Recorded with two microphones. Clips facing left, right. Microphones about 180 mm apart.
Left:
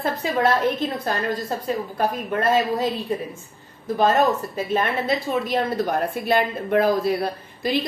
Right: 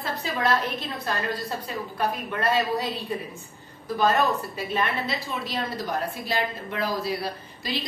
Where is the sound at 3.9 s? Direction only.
45° left (ahead or behind).